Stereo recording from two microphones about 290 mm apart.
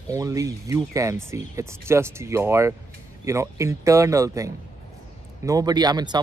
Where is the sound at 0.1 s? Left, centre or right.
Centre.